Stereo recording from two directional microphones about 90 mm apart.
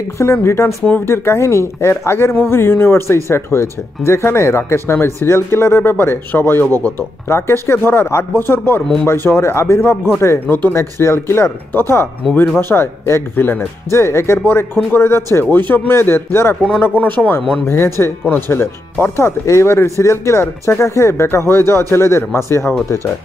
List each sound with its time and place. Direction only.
0.2 s speech: 30° left (ahead or behind)